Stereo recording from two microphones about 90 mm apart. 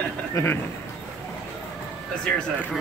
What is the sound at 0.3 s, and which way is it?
Speech, 25° left (ahead or behind).